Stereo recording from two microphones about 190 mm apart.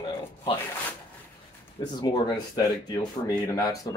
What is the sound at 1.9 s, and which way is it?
Speech, 20° left (ahead or behind).